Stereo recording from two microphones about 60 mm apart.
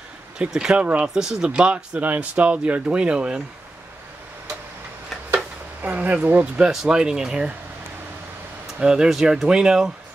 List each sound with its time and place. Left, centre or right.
0.5 s speech: centre
5.3 s a sound: right
6.7 s speech: centre
8.7 s speech: centre